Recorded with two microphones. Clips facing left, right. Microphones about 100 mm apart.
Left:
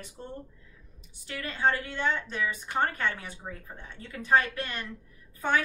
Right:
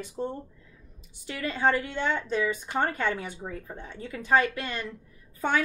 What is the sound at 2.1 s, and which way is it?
Speech, 20° right (ahead or behind).